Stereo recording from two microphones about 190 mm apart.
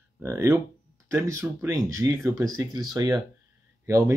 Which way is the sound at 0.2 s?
15° right (ahead or behind).